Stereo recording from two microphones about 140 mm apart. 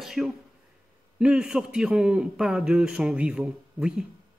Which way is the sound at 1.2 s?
5° right (ahead or behind).